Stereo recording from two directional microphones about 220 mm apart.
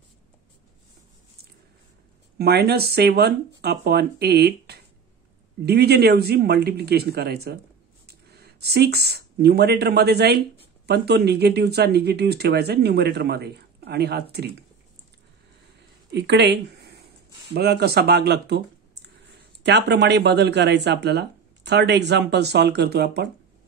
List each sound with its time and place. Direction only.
2.3 s speech: 45° right (ahead or behind)
16.1 s speech: 50° right (ahead or behind)
19.6 s speech: 50° right (ahead or behind)